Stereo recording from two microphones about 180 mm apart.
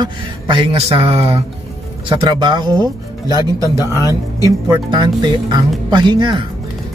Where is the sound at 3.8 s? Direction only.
20° left (ahead or behind).